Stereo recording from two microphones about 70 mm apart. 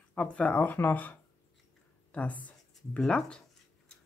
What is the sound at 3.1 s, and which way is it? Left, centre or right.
Speech, centre.